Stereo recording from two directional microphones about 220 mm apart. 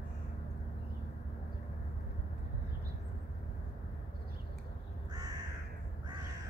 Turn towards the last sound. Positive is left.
turn(degrees=-15)  # may be behind; listen again after turning